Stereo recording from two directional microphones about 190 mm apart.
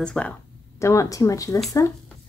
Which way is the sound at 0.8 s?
15° left (ahead or behind).